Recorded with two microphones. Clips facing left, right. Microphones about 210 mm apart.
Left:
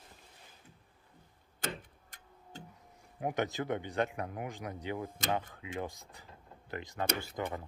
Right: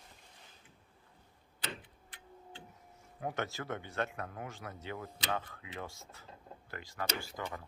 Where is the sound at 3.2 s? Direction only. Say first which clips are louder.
Left 5 dB; 15° left (ahead or behind).